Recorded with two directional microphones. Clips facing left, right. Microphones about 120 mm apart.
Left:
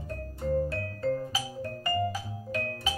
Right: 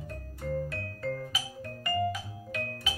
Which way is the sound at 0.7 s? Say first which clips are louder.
Left 5 dB; 35° left (ahead or behind).